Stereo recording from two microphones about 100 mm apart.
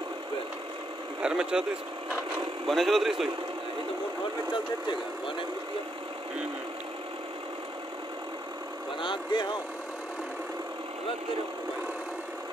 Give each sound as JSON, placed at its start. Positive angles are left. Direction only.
{"t": 1.2, "sound": "speech", "side_deg": -10}
{"t": 2.7, "sound": "a man's voice", "side_deg": 0}
{"t": 9.0, "sound": "speech", "side_deg": 50}